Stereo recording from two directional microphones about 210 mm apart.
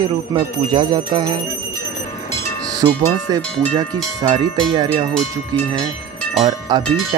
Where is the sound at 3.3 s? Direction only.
15° right (ahead or behind).